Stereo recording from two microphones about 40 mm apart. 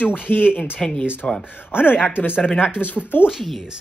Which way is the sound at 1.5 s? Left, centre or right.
Left.